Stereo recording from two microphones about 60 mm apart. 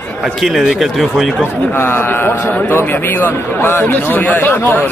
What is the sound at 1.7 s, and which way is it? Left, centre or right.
A man's voice, left.